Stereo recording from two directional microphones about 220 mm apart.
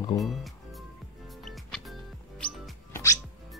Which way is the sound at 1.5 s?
Centre (ahead or behind).